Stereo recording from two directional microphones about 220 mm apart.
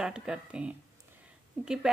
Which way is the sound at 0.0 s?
5° right (ahead or behind).